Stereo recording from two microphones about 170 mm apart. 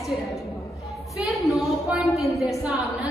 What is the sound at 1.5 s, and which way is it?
Speech, centre (ahead or behind).